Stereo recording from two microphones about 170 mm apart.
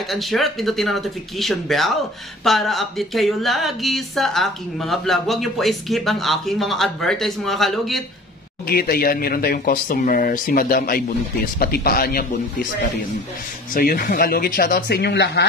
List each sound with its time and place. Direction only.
0.1 s speech: centre (ahead or behind)
8.6 s speech: 65° left (ahead or behind)
13.7 s speech: 55° left (ahead or behind); by 15.4 s 75° left (ahead or behind)